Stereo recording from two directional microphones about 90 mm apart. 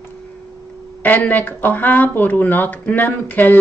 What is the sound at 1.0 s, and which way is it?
Speech, 20° left (ahead or behind).